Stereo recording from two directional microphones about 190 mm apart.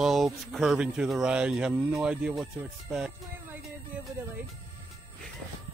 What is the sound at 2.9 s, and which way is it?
Music, 5° right (ahead or behind).